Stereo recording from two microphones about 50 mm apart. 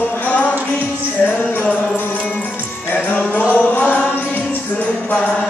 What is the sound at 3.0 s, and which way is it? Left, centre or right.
Music, left.